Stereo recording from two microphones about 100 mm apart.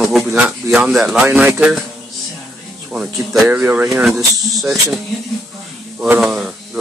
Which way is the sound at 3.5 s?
15° right (ahead or behind).